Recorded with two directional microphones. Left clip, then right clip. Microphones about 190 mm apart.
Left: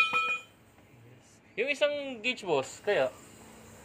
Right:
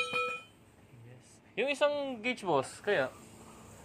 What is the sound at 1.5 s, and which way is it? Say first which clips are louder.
Speech: left 1 dB; 45° right (ahead or behind).